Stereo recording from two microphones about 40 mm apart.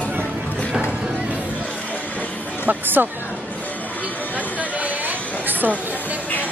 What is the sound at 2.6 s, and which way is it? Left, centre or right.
Music, right.